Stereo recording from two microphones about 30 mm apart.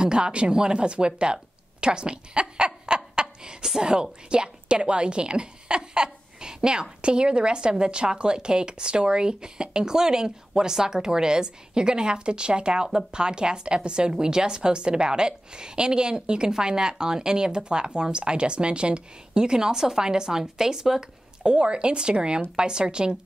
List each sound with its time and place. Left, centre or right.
0.0 s a woman's voice: right; by 21.0 s centre
21.4 s speech: right